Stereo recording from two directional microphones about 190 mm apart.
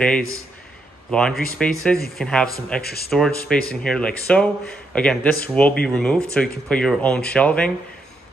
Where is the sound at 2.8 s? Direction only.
55° left (ahead or behind).